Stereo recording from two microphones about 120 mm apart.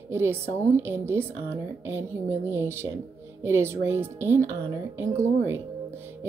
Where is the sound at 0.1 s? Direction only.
20° right (ahead or behind).